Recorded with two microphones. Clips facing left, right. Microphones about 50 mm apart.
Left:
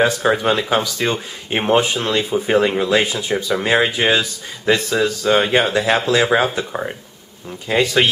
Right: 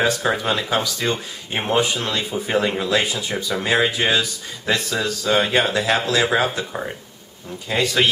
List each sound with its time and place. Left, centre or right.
0.0 s speech: centre